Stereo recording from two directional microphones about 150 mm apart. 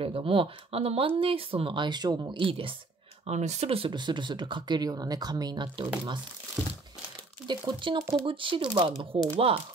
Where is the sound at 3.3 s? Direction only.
50° right (ahead or behind); by 5.9 s 30° right (ahead or behind).